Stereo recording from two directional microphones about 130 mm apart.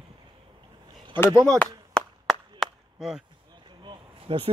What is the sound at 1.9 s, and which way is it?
Chop, centre (ahead or behind).